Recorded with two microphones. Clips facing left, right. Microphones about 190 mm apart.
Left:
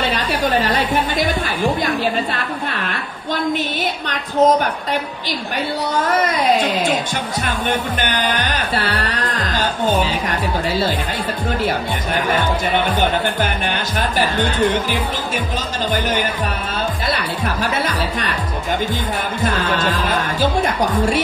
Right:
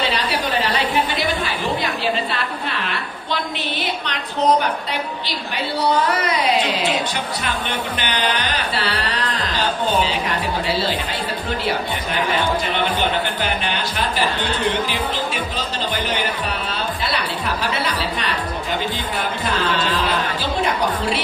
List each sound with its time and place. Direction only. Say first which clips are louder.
0.0 s a sound: left 2 dB; 50° left (ahead or behind)
2.3 s a sound: left 2 dB; 45° left (ahead or behind)
4.1 s music: left 4 dB; 45° left (ahead or behind)
5.8 s music: even; 45° left (ahead or behind)
8.0 s music: left 2 dB; 45° left (ahead or behind)
13.9 s music: left 4 dB; 45° left (ahead or behind)
19.4 s music: left 4 dB; 45° left (ahead or behind)